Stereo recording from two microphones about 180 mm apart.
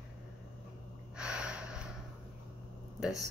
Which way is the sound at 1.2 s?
5° right (ahead or behind).